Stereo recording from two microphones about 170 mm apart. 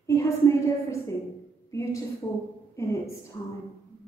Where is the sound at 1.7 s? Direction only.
20° left (ahead or behind).